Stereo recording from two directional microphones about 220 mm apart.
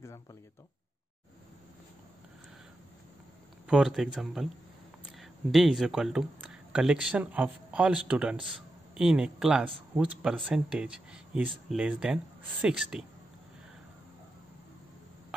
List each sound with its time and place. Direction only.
0.0 s speech: 15° left (ahead or behind)
3.6 s speech: 5° right (ahead or behind)